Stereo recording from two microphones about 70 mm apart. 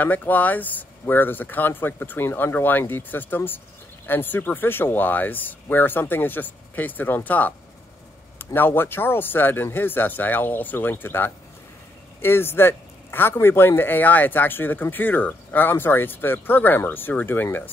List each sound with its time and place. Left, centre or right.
0.0 s speech: left
8.5 s speech: left